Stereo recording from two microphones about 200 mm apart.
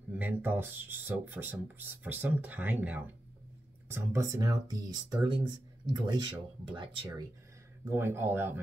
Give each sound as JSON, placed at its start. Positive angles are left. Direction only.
{"t": 0.1, "sound": "speech", "side_deg": -10}